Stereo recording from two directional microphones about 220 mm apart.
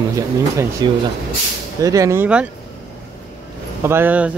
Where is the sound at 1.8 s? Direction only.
15° right (ahead or behind).